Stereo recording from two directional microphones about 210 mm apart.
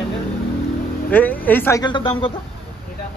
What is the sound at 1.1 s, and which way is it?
Speech, 10° left (ahead or behind).